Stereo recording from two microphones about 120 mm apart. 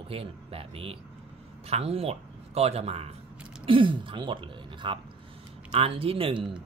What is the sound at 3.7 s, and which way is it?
A man's voice, 45° right (ahead or behind).